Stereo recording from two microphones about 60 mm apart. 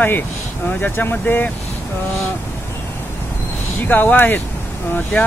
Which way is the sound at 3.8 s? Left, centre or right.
Left.